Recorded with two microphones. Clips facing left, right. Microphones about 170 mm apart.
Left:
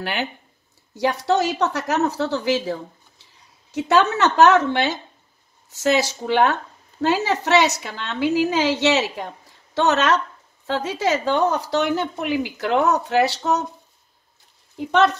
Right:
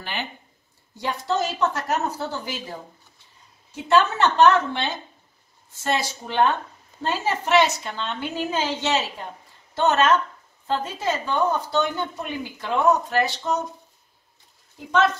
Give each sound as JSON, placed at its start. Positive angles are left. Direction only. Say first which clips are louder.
{"t": 1.2, "sound": "a woman's voice", "louder": "left 1 dB", "side_deg": 75}